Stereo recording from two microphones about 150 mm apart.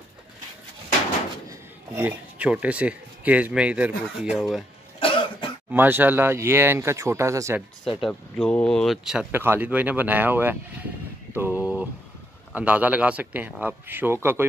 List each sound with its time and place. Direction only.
1.5 s speech: 10° right (ahead or behind)
5.0 s cough: 35° left (ahead or behind)
5.7 s speech: 15° right (ahead or behind)
8.0 s speech: 5° left (ahead or behind)
9.3 s speech: 15° right (ahead or behind)